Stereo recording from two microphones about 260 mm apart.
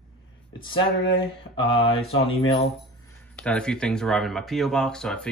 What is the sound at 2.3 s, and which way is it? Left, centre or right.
Speech, left.